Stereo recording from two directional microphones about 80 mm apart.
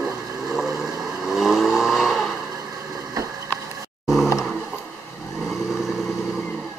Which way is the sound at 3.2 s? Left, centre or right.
Right.